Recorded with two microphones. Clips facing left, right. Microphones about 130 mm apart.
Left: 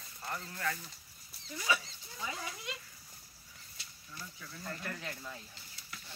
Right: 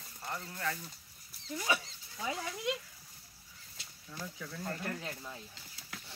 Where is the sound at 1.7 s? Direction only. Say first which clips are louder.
Even; 55° right (ahead or behind).